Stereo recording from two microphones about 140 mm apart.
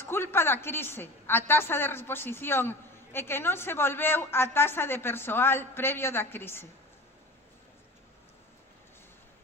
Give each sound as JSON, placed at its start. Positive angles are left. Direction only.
{"t": 0.0, "sound": "a woman's voice", "side_deg": 15}